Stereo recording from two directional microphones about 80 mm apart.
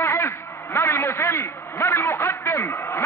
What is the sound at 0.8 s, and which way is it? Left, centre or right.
A man's voice, left.